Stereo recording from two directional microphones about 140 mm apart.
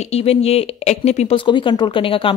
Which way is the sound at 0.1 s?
45° left (ahead or behind).